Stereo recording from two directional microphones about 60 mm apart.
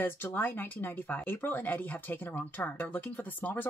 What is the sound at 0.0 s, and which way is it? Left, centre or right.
Speech, left.